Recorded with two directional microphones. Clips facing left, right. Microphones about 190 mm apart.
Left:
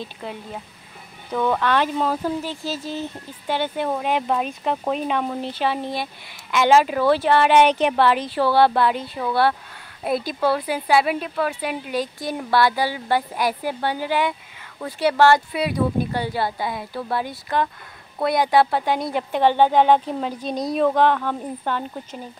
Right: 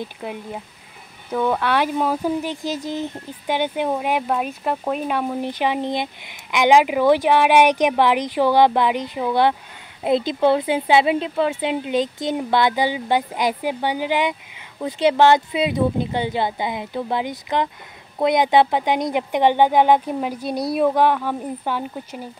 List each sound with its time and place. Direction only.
0.0 s speech: 15° right (ahead or behind)